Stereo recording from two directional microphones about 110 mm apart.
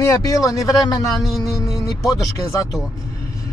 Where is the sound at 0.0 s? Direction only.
30° left (ahead or behind).